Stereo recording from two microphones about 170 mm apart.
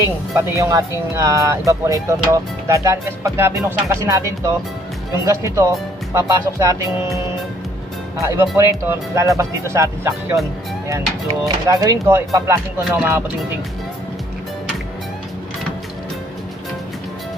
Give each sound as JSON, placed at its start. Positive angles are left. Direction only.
{"t": 0.4, "sound": "speech", "side_deg": -15}
{"t": 8.2, "sound": "speech", "side_deg": -15}
{"t": 11.4, "sound": "speech", "side_deg": -20}